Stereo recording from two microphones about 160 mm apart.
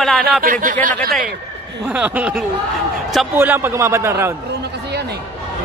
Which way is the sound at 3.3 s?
15° right (ahead or behind).